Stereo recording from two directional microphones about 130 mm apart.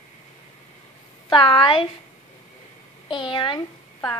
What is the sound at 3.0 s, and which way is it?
Speech, 40° left (ahead or behind).